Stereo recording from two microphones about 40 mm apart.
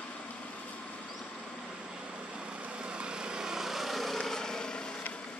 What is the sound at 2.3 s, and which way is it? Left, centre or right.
Vehicle, right.